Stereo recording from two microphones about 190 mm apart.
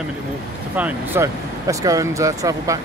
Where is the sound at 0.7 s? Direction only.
10° right (ahead or behind).